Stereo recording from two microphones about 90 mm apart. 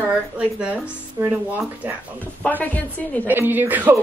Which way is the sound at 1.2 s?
25° right (ahead or behind).